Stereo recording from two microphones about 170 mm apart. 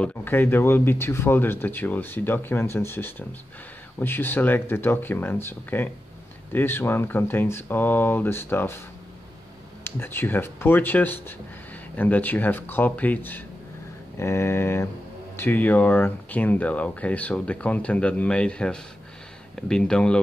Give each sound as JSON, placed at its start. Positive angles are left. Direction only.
{"t": 0.0, "sound": "speech", "side_deg": 10}
{"t": 9.8, "sound": "speech", "side_deg": 15}